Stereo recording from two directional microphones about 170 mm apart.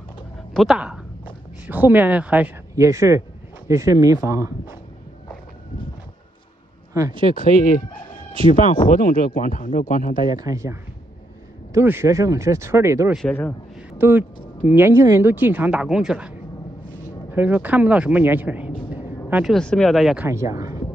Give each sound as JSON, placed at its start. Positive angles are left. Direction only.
{"t": 0.6, "sound": "speech", "side_deg": -5}
{"t": 6.9, "sound": "speech", "side_deg": -20}
{"t": 7.3, "sound": "speech", "side_deg": 50}
{"t": 10.2, "sound": "speech", "side_deg": -20}
{"t": 13.1, "sound": "a man's voice", "side_deg": 5}
{"t": 13.9, "sound": "speech", "side_deg": -10}
{"t": 20.2, "sound": "speech", "side_deg": -20}